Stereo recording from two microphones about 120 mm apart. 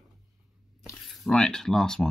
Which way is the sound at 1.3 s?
5° left (ahead or behind).